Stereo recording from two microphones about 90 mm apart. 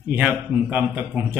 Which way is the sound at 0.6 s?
20° right (ahead or behind).